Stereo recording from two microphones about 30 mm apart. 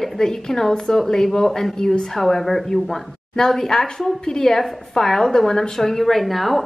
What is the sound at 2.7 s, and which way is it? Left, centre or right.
A woman's voice, centre.